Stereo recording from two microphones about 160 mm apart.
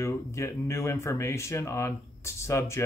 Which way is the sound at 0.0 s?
15° left (ahead or behind).